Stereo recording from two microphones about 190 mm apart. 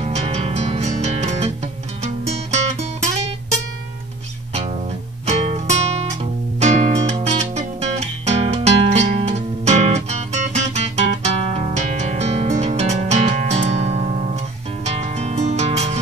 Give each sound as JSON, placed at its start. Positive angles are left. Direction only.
{"t": 0.0, "sound": "music", "side_deg": -35}
{"t": 2.5, "sound": "music", "side_deg": -35}
{"t": 5.2, "sound": "music", "side_deg": -35}